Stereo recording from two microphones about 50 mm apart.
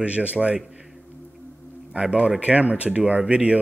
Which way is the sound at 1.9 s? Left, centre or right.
Centre.